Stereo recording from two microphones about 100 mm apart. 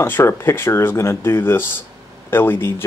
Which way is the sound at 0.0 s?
25° left (ahead or behind).